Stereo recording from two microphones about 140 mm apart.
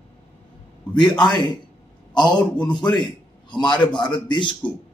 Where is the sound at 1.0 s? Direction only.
30° left (ahead or behind).